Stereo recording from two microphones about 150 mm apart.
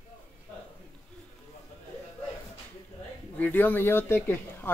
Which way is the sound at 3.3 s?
10° left (ahead or behind).